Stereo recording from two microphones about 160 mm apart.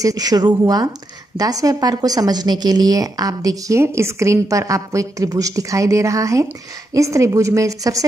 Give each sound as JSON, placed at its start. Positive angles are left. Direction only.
{"t": 0.0, "sound": "a woman's voice", "side_deg": -25}